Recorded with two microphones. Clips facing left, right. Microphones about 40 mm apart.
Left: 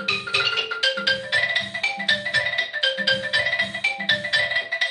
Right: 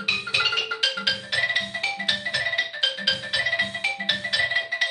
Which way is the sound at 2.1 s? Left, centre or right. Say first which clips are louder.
Left 7 dB; left.